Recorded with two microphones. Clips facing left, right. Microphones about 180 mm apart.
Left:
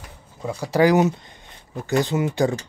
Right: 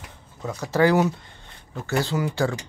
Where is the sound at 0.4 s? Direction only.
10° left (ahead or behind).